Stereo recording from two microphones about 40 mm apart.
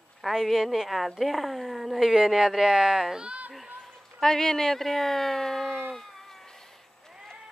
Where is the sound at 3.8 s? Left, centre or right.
Centre.